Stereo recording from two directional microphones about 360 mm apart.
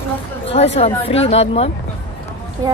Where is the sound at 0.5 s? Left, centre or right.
Centre.